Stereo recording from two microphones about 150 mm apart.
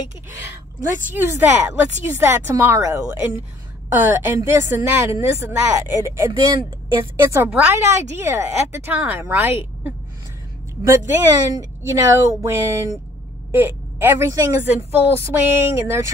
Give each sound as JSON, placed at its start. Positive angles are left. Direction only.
{"t": 1.1, "sound": "a woman's voice", "side_deg": -15}
{"t": 7.3, "sound": "a woman's voice", "side_deg": -10}